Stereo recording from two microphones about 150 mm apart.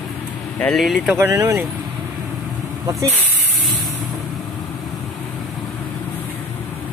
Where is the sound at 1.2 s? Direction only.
20° right (ahead or behind).